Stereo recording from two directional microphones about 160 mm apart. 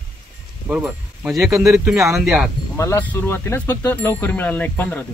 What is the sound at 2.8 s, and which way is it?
Speech, 15° left (ahead or behind).